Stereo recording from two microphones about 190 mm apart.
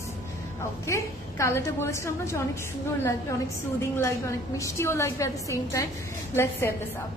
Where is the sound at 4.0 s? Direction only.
15° left (ahead or behind).